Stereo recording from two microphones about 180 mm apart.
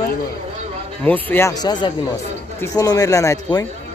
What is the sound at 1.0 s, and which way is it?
Speech, 10° left (ahead or behind).